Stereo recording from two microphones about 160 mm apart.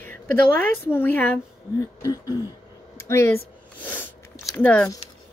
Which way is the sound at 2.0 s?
20° left (ahead or behind).